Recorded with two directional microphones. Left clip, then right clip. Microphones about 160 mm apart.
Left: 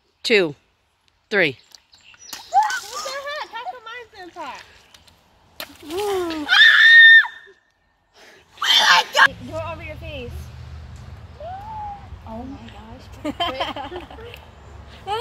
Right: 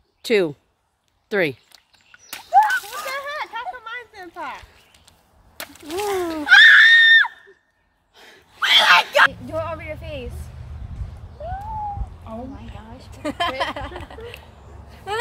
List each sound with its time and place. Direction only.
0.2 s speech: 5° right (ahead or behind)
2.3 s a sound: 25° right (ahead or behind)
3.2 s a sound: 20° left (ahead or behind)
5.6 s speech: 20° left (ahead or behind)
6.4 s screaming: 20° left (ahead or behind)
8.2 s sneeze: 30° left (ahead or behind)
8.5 s screaming: 25° right (ahead or behind)
9.5 s speech: 5° left (ahead or behind)
12.3 s a sound: 30° right (ahead or behind)
12.7 s speech: 10° left (ahead or behind)
13.1 s speech: 5° right (ahead or behind)
14.4 s a sound: 5° right (ahead or behind)